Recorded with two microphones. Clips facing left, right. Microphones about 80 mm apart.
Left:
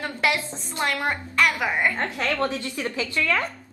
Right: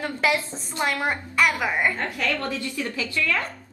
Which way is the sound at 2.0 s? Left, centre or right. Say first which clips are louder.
Left 2 dB; left.